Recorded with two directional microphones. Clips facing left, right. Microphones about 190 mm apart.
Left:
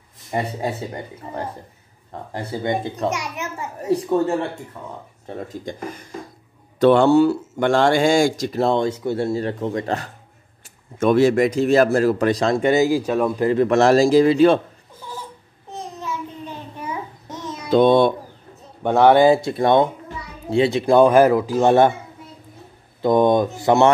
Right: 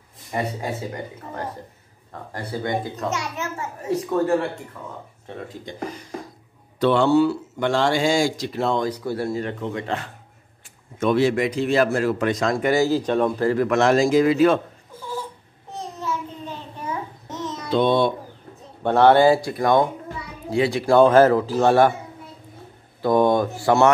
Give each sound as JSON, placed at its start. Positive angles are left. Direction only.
{"t": 0.3, "sound": "speech", "side_deg": 30}
{"t": 2.3, "sound": "a child's voice", "side_deg": 20}
{"t": 3.8, "sound": "speech", "side_deg": 35}
{"t": 5.3, "sound": "speech", "side_deg": 40}
{"t": 5.7, "sound": "speech", "side_deg": 50}
{"t": 8.5, "sound": "speech", "side_deg": 30}
{"t": 13.5, "sound": "a child's voice", "side_deg": 25}
{"t": 13.7, "sound": "speech", "side_deg": 35}
{"t": 15.7, "sound": "babbling", "side_deg": 15}
{"t": 17.6, "sound": "a child's voice", "side_deg": 45}
{"t": 18.8, "sound": "a child's voice", "side_deg": 15}
{"t": 23.0, "sound": "a child's voice", "side_deg": 20}